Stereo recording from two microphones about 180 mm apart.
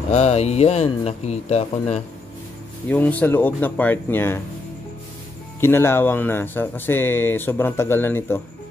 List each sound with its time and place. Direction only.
0.1 s speech: 35° left (ahead or behind)
2.9 s speech: 10° left (ahead or behind)
5.6 s speech: 15° left (ahead or behind)